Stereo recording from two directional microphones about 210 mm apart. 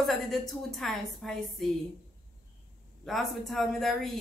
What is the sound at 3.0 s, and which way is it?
A woman's voice, centre (ahead or behind).